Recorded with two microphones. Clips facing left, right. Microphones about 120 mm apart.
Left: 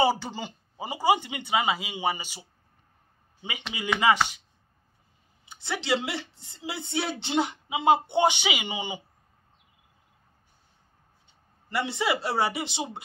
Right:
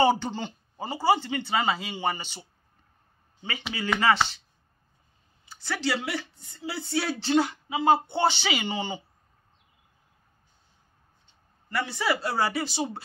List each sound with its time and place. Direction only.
0.0 s speech: 5° left (ahead or behind)
5.5 s speech: 20° left (ahead or behind)
11.7 s speech: 20° left (ahead or behind)